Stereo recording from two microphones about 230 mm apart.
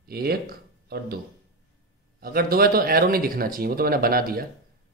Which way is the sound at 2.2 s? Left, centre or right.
Right.